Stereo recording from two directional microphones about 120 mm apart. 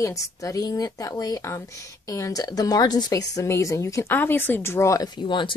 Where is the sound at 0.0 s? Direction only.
25° left (ahead or behind).